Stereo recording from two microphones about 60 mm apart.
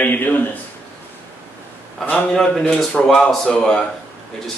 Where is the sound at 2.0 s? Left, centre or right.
Left.